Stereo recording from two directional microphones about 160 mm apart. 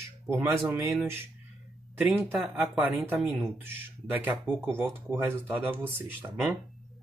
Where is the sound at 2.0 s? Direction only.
10° right (ahead or behind).